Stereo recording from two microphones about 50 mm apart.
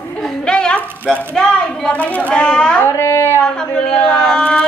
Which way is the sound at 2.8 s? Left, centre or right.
Left.